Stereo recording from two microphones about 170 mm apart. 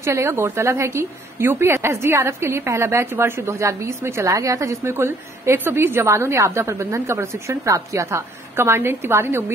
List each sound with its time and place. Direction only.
0.0 s a woman's voice: 15° right (ahead or behind)